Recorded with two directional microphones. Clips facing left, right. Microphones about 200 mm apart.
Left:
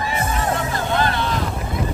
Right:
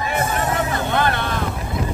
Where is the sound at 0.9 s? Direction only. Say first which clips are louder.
Left 1 dB; 55° right (ahead or behind).